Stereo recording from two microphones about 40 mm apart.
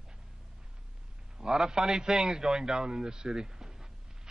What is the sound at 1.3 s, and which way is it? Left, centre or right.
A man's voice, centre.